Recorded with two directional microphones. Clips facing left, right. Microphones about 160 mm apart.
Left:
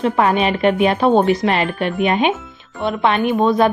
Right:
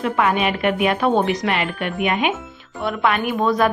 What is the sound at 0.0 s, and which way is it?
A woman's voice, 30° left (ahead or behind).